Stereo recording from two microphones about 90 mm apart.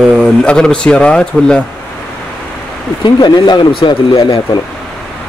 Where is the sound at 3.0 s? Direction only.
60° left (ahead or behind).